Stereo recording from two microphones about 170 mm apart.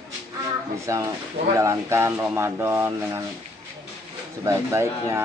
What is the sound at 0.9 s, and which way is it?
Speech, 20° right (ahead or behind).